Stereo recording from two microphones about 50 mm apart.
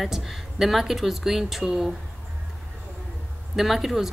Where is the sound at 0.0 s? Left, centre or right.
Centre.